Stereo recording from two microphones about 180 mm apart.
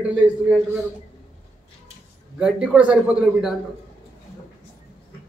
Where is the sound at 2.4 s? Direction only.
5° right (ahead or behind).